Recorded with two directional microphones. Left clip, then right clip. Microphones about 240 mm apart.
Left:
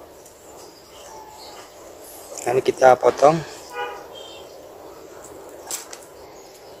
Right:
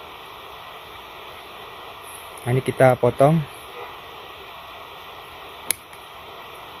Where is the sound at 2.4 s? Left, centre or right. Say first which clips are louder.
Left 2 dB; right.